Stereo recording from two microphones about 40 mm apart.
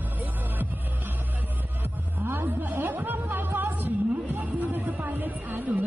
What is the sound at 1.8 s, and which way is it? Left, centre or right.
Music, right.